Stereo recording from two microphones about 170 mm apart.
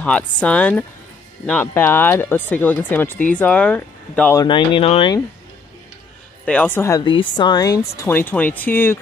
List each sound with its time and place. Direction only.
0.0 s speech: 5° left (ahead or behind)
4.4 s speech: 25° left (ahead or behind)
6.4 s speech: 5° left (ahead or behind)
7.0 s speech: 25° left (ahead or behind); by 8.9 s 10° left (ahead or behind)